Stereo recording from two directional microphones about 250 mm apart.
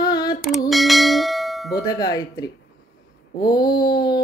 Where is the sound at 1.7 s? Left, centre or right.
Centre.